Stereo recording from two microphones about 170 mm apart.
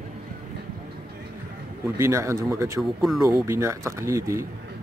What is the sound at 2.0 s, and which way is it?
A man's voice, 15° right (ahead or behind).